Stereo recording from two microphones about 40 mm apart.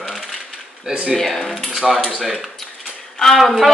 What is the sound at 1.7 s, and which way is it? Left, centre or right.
Speech, centre.